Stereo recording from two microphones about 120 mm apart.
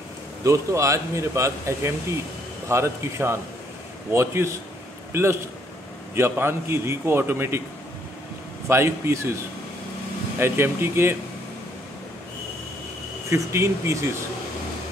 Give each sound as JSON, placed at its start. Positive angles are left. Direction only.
{"t": 0.4, "sound": "speech", "side_deg": -25}
{"t": 8.6, "sound": "speech", "side_deg": -20}
{"t": 10.4, "sound": "speech", "side_deg": -20}
{"t": 13.3, "sound": "speech", "side_deg": -25}